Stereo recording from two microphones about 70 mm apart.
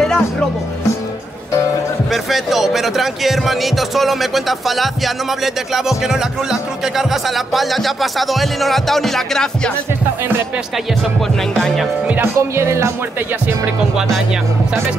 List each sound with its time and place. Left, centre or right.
2.3 s speech: centre
11.6 s speech: centre
12.4 s speech: right